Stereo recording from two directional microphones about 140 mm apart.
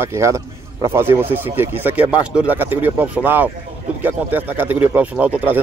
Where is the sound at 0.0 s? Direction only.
20° right (ahead or behind).